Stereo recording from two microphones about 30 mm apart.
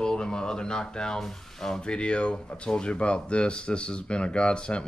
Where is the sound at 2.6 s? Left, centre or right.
Left.